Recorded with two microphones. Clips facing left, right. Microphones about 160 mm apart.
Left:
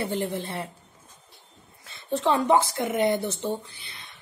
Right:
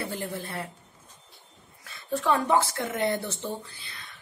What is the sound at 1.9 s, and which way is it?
Speech, 25° left (ahead or behind).